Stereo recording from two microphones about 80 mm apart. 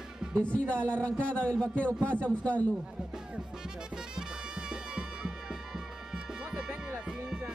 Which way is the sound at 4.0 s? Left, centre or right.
Centre.